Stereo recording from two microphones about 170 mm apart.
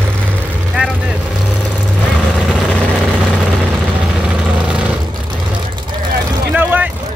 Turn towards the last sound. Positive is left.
turn(degrees=-10)  # may be behind; listen again after turning